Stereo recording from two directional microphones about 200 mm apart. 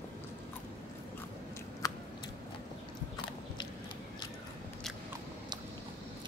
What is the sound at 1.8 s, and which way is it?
Scissors, 15° left (ahead or behind).